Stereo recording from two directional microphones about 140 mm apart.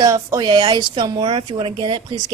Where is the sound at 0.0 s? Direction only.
25° right (ahead or behind).